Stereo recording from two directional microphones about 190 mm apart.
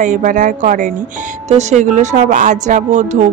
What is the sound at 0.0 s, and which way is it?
A woman's voice, 45° right (ahead or behind).